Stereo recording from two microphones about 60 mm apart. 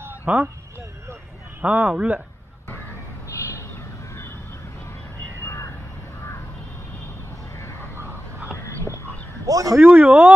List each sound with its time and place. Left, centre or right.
0.3 s speech: centre
1.6 s speech: right
3.3 s a sound: left
5.4 s vehicle: left
9.5 s speech: right
9.8 s speech: right